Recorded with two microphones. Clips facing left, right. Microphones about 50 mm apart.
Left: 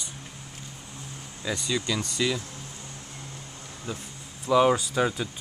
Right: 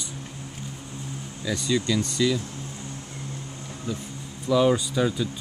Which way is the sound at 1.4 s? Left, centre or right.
Left.